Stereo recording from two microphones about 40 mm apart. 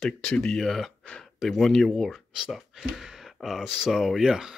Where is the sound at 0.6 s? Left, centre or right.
Centre.